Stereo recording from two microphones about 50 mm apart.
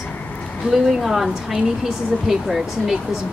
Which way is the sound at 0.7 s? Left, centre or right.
Centre.